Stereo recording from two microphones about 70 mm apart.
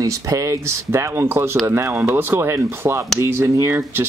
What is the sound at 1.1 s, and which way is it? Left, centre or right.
Speech, right.